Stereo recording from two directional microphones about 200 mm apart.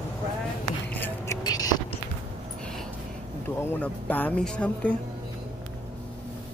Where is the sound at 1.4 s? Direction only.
20° left (ahead or behind).